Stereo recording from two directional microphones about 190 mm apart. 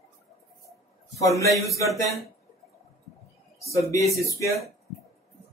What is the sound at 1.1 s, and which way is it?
Speech, 15° left (ahead or behind).